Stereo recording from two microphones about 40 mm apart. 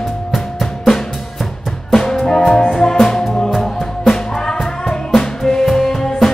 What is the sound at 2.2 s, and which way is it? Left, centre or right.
Music, centre.